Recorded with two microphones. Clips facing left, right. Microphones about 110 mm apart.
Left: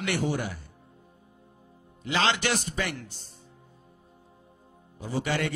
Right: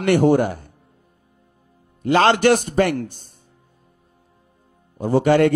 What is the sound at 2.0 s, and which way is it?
A man's voice, 50° right (ahead or behind).